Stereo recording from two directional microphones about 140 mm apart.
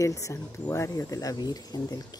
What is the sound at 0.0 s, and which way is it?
Speech, 20° left (ahead or behind).